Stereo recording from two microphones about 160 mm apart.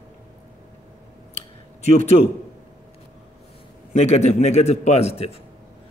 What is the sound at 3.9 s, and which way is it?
A man's voice, 45° left (ahead or behind).